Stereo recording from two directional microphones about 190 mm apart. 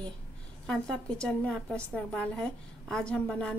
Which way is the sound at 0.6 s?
5° left (ahead or behind).